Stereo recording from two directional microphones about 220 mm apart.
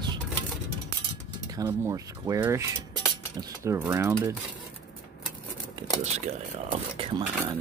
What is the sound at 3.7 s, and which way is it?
Speech, 10° right (ahead or behind).